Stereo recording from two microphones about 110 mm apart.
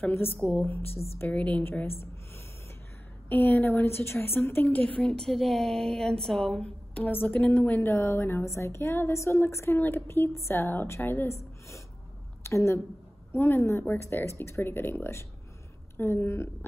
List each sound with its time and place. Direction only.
0.0 s a woman's voice: 20° left (ahead or behind)
3.3 s a woman's voice: 20° left (ahead or behind); by 6.7 s 5° left (ahead or behind)
7.0 s a woman's voice: 20° left (ahead or behind)
7.2 s a woman's voice: 5° left (ahead or behind)
12.4 s a woman's voice: 25° left (ahead or behind)